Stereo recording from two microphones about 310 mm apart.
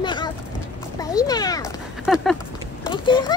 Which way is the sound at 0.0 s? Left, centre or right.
Centre.